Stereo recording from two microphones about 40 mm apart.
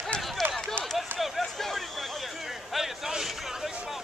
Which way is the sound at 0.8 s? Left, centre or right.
Right.